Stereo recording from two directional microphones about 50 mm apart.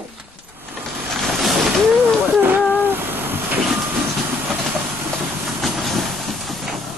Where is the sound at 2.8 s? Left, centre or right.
Right.